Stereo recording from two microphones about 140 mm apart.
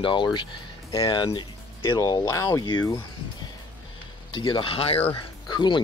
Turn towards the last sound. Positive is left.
turn(degrees=35)  # may be behind; listen again after turning